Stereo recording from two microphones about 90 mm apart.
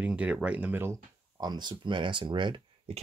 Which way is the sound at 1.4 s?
50° right (ahead or behind).